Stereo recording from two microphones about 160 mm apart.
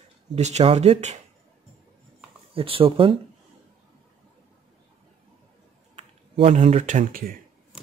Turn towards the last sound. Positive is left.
turn(degrees=-60)  # may be behind; listen again after turning